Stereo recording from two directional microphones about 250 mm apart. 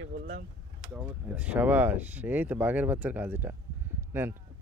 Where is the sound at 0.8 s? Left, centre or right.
Centre.